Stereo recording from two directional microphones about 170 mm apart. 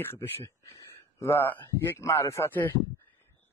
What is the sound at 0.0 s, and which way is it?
Speech, 15° left (ahead or behind).